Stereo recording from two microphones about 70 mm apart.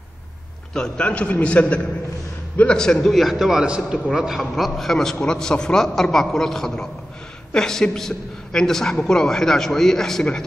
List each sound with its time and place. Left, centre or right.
0.7 s a man's voice: centre
2.8 s a woman's voice: centre
4.4 s a woman's voice: centre